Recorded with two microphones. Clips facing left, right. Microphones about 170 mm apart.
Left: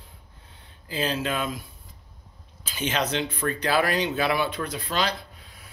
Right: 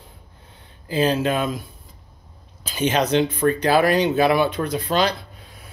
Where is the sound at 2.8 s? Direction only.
40° right (ahead or behind).